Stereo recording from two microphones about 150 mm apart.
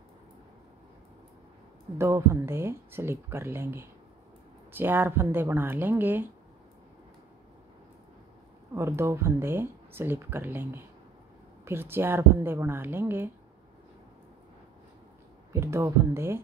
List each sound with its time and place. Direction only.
2.0 s speech: 20° right (ahead or behind)
8.7 s speech: 15° right (ahead or behind)
15.5 s speech: 20° right (ahead or behind)